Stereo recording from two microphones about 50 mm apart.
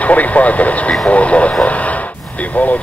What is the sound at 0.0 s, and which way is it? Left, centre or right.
Speech, left.